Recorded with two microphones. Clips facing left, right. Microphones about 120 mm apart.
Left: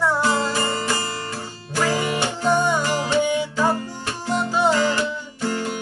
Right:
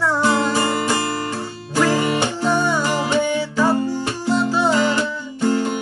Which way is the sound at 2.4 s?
15° left (ahead or behind).